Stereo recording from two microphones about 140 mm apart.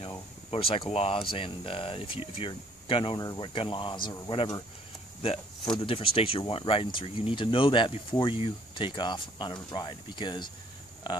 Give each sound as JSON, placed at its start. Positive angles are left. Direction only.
{"t": 0.5, "sound": "speech", "side_deg": 40}
{"t": 5.8, "sound": "speech", "side_deg": 40}